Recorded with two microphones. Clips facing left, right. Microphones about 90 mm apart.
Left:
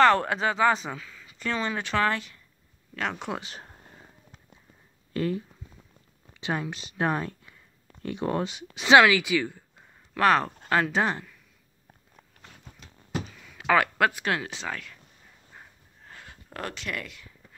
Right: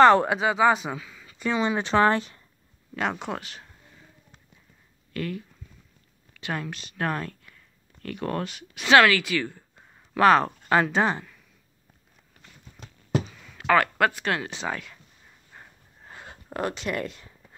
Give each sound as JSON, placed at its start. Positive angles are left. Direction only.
{"t": 0.0, "sound": "speech", "side_deg": -20}
{"t": 2.9, "sound": "speech", "side_deg": -10}
{"t": 3.5, "sound": "a sound", "side_deg": 40}
{"t": 5.1, "sound": "speech", "side_deg": 25}
{"t": 9.0, "sound": "speech", "side_deg": 10}
{"t": 12.4, "sound": "a sound", "side_deg": 0}
{"t": 13.4, "sound": "speech", "side_deg": 5}
{"t": 16.3, "sound": "a sound", "side_deg": -25}
{"t": 16.9, "sound": "speech", "side_deg": -35}